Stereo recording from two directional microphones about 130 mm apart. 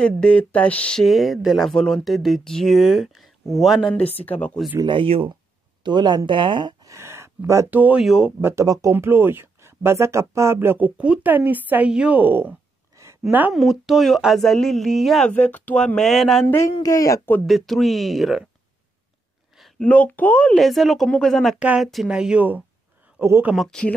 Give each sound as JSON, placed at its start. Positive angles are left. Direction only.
{"t": 0.0, "sound": "speech", "side_deg": 10}
{"t": 4.0, "sound": "speech", "side_deg": 50}
{"t": 4.7, "sound": "speech", "side_deg": -40}
{"t": 6.9, "sound": "a sound", "side_deg": -20}
{"t": 8.0, "sound": "speech", "side_deg": -5}
{"t": 8.4, "sound": "speech", "side_deg": -20}
{"t": 13.6, "sound": "speech", "side_deg": 0}
{"t": 15.3, "sound": "speech", "side_deg": 15}
{"t": 16.8, "sound": "speech", "side_deg": 25}
{"t": 17.5, "sound": "speech", "side_deg": 0}
{"t": 19.6, "sound": "speech", "side_deg": 10}
{"t": 21.5, "sound": "speech", "side_deg": -10}
{"t": 23.5, "sound": "speech", "side_deg": 0}